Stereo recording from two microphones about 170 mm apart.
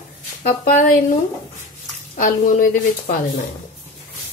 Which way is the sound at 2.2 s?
55° left (ahead or behind).